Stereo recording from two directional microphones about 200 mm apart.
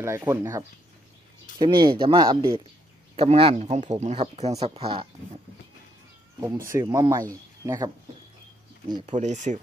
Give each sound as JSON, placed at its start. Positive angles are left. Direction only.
{"t": 0.0, "sound": "speech", "side_deg": -15}
{"t": 6.7, "sound": "speech", "side_deg": -15}
{"t": 9.0, "sound": "speech", "side_deg": -35}